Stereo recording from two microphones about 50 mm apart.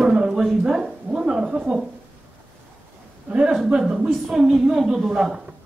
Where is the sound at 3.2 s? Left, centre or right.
Right.